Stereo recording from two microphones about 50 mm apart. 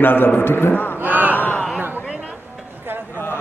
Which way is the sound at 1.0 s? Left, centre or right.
Right.